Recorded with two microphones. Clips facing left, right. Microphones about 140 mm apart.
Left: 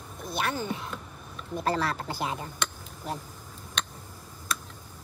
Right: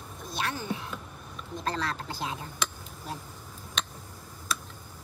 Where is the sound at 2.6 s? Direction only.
Centre (ahead or behind).